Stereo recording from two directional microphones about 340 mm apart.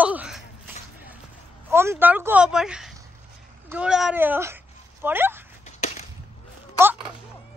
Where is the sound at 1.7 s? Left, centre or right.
Centre.